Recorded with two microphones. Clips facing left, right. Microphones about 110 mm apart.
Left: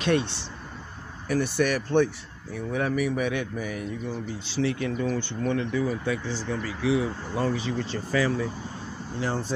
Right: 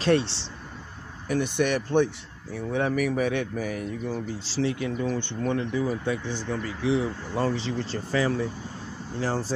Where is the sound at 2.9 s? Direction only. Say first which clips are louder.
Right 1 dB; 45° right (ahead or behind).